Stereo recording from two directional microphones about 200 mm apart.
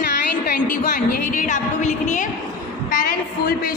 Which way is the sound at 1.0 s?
40° left (ahead or behind).